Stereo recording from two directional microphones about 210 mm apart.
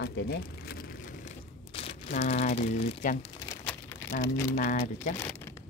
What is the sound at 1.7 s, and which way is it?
Crumpling, 30° left (ahead or behind).